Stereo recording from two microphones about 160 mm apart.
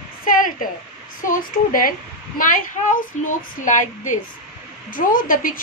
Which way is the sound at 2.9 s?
55° left (ahead or behind).